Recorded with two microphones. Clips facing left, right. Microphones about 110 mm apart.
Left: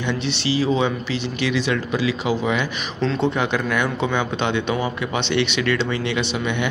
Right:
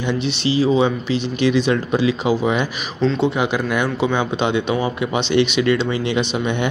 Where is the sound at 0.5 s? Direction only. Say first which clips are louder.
Right 4 dB; 15° right (ahead or behind).